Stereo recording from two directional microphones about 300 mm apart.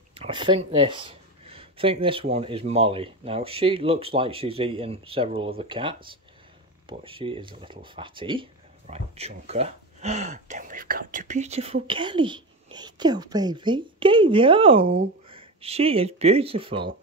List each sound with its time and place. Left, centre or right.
0.1 s speech: centre